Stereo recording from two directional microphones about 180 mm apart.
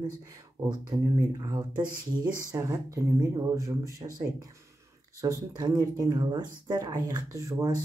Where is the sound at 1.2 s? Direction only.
20° right (ahead or behind).